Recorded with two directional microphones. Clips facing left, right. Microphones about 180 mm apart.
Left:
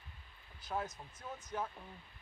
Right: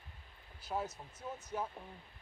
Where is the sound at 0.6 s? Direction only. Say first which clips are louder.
Right 1 dB; 10° right (ahead or behind).